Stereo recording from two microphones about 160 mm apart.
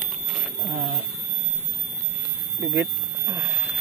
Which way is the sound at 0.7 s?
30° right (ahead or behind).